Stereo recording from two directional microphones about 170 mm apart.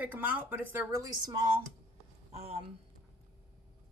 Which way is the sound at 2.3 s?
35° right (ahead or behind).